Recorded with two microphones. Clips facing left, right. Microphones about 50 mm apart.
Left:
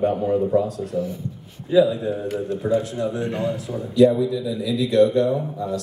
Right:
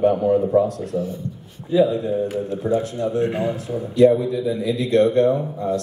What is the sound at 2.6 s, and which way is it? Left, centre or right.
Speech, right.